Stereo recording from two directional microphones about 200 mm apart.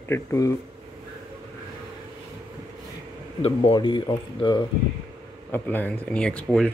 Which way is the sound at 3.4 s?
25° left (ahead or behind).